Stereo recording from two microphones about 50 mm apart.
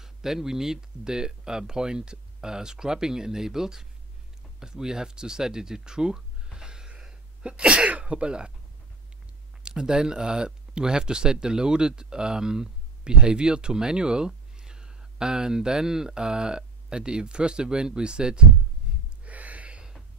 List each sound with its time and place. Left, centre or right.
0.0 s speech: centre
9.6 s speech: centre
18.9 s gasp: centre
19.2 s a sound: right